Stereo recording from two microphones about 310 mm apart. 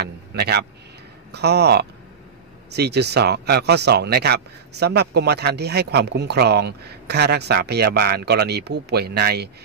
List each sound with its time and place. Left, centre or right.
0.0 s speech: right